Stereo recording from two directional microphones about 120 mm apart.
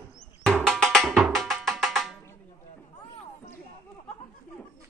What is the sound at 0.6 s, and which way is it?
Music, centre (ahead or behind).